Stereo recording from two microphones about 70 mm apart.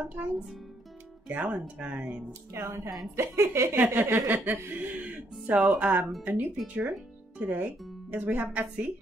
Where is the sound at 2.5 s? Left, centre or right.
Right.